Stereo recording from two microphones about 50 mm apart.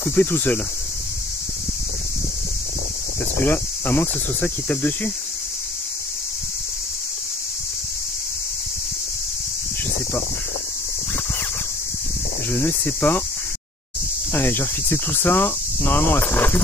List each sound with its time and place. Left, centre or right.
0.0 s speech: left
3.3 s speech: left
12.6 s speech: left
14.3 s speech: left